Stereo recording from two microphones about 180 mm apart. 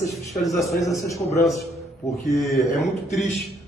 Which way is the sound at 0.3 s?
Centre (ahead or behind).